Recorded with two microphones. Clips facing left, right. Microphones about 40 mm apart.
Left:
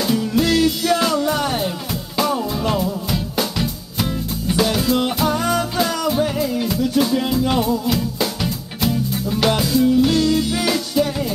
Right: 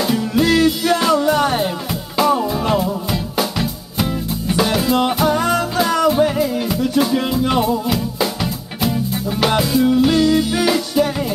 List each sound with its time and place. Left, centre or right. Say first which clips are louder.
0.0 s music: right 2 dB; centre